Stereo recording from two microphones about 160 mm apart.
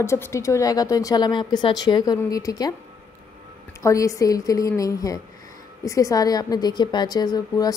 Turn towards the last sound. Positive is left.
turn(degrees=25)  # may be behind; listen again after turning